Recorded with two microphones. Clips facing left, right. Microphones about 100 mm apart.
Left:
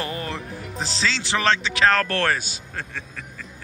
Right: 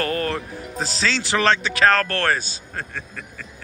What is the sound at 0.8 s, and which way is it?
Mantra, 25° left (ahead or behind).